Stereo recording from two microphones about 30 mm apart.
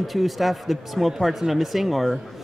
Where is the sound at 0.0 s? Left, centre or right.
Centre.